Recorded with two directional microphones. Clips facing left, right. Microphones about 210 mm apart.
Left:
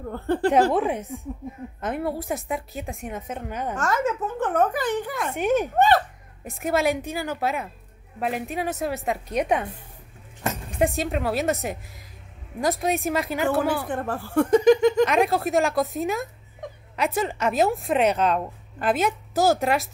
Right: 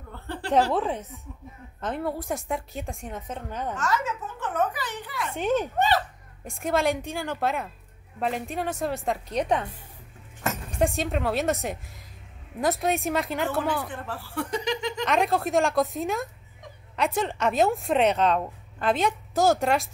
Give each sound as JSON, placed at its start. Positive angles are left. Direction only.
{"t": 0.0, "sound": "speech", "side_deg": 50}
{"t": 0.7, "sound": "a woman's voice", "side_deg": 15}
{"t": 3.7, "sound": "a woman's voice", "side_deg": 50}
{"t": 5.3, "sound": "a woman's voice", "side_deg": 10}
{"t": 5.8, "sound": "a woman's voice", "side_deg": 50}
{"t": 6.4, "sound": "a woman's voice", "side_deg": 5}
{"t": 10.8, "sound": "a woman's voice", "side_deg": 0}
{"t": 13.8, "sound": "a woman's voice", "side_deg": 50}
{"t": 15.0, "sound": "a woman's voice", "side_deg": 0}